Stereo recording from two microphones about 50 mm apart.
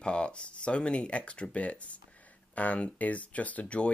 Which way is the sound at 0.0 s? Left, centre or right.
Left.